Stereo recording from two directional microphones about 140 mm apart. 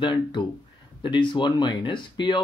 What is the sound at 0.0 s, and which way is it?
Speech, 35° left (ahead or behind).